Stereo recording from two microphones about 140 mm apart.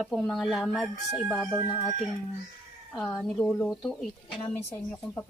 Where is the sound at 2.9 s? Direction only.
5° left (ahead or behind).